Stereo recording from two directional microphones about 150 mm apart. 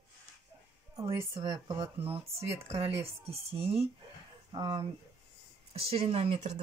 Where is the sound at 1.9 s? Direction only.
40° right (ahead or behind).